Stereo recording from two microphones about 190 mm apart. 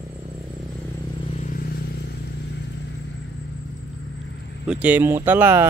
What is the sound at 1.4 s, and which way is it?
Vehicle, 50° left (ahead or behind).